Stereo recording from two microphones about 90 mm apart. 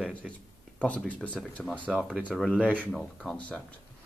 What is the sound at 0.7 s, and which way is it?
Speech, 15° left (ahead or behind).